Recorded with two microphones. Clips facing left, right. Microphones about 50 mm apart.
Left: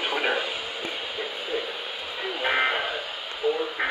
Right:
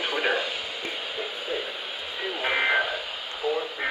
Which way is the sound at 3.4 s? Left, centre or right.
Centre.